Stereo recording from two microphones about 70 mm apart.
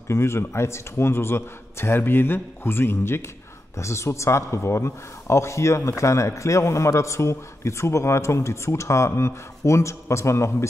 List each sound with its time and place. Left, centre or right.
0.1 s a man's voice: left